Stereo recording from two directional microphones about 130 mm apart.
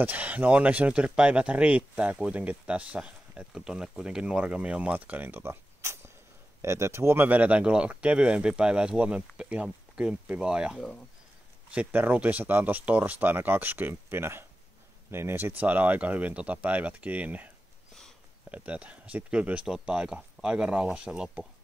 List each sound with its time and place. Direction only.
0.0 s speech: 10° right (ahead or behind)
18.5 s speech: 10° right (ahead or behind)